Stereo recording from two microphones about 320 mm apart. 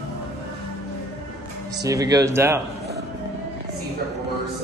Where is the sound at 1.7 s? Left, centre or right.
Centre.